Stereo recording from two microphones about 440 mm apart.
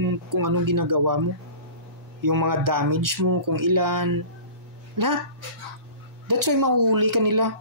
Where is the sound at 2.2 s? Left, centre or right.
Right.